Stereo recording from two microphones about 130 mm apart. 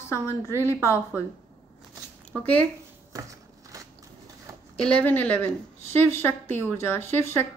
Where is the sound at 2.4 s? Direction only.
10° left (ahead or behind).